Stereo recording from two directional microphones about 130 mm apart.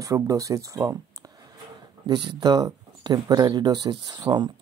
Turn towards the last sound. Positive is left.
turn(degrees=-35)  # may be behind; listen again after turning